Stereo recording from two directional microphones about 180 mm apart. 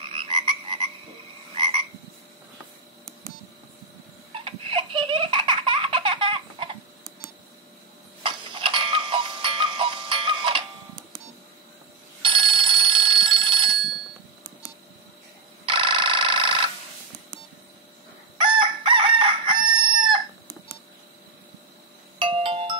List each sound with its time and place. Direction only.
0.0 s croak: 30° right (ahead or behind)
4.3 s baby laughter: 30° right (ahead or behind)
8.2 s tick-tock: 30° right (ahead or behind)
12.2 s telephone bell ringing: 30° right (ahead or behind)
15.6 s telephone: 30° right (ahead or behind)
18.4 s chicken: 30° right (ahead or behind)
22.2 s music: 30° right (ahead or behind)